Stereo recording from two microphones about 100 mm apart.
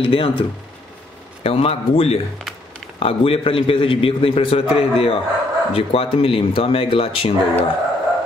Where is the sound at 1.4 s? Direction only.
80° left.